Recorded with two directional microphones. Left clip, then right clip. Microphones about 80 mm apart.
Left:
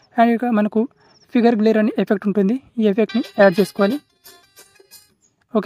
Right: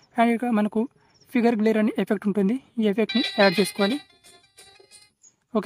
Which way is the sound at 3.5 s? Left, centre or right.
Centre.